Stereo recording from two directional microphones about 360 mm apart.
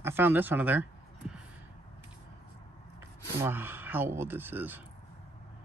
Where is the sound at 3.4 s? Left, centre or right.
Centre.